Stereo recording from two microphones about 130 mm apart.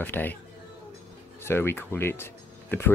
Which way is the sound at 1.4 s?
20° left (ahead or behind).